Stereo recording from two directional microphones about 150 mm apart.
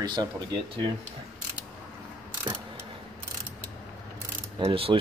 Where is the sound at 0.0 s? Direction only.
30° right (ahead or behind).